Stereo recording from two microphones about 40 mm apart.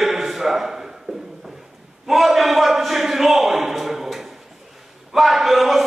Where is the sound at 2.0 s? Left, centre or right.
Centre.